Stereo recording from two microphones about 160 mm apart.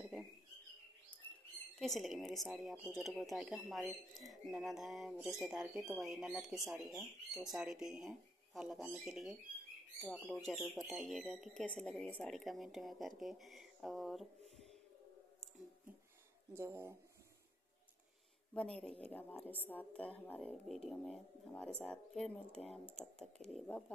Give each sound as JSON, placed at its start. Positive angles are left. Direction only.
{"t": 1.8, "sound": "a woman's voice", "side_deg": 0}
{"t": 16.5, "sound": "speech", "side_deg": -15}
{"t": 18.5, "sound": "a woman's voice", "side_deg": 5}